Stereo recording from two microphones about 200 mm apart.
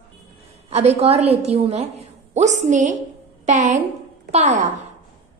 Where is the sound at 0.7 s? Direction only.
30° right (ahead or behind).